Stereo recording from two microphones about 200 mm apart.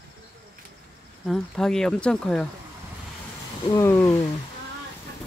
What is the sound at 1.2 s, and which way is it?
Speech, centre (ahead or behind).